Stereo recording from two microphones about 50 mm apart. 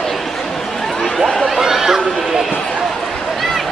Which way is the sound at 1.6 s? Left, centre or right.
Centre.